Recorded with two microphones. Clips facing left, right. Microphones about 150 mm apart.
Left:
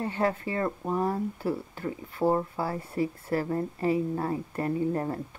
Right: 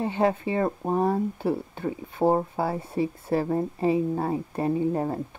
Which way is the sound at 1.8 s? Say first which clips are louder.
Right 3 dB; 20° right (ahead or behind).